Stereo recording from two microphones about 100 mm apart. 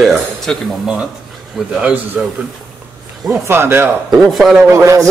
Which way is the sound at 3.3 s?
25° right (ahead or behind).